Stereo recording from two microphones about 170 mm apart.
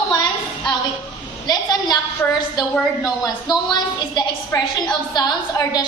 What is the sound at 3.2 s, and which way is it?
A woman's voice, 25° left (ahead or behind).